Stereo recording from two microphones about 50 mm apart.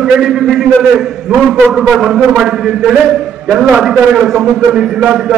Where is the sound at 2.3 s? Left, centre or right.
Centre.